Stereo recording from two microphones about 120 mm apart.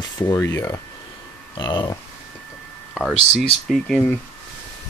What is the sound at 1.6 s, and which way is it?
Speech, 40° left (ahead or behind).